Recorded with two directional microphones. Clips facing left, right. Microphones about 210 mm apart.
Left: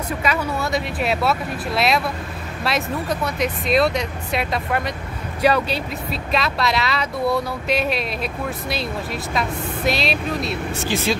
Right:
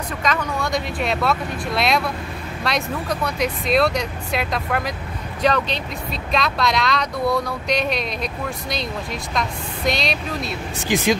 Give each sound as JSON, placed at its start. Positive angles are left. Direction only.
{"t": 0.2, "sound": "speech", "side_deg": 10}
{"t": 10.8, "sound": "speech", "side_deg": -15}